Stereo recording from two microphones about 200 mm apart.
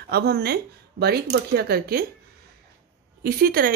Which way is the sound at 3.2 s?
50° right (ahead or behind).